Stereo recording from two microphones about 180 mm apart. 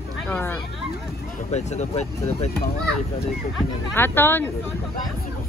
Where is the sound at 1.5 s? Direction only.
40° left (ahead or behind).